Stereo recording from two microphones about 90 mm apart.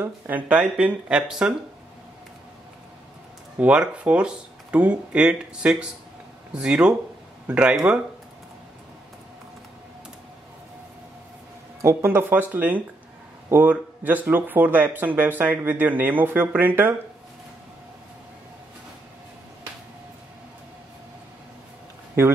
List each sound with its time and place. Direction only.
0.0 s speech: 20° right (ahead or behind)
3.5 s speech: 15° right (ahead or behind)
11.8 s speech: 30° right (ahead or behind)
22.2 s speech: 30° right (ahead or behind)